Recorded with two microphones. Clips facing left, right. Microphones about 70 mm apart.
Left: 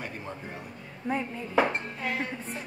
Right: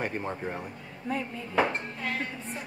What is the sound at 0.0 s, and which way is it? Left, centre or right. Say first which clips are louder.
Speech: right 6 dB; right.